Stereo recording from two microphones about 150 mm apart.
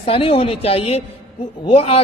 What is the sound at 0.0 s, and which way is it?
A man's voice, 40° left (ahead or behind).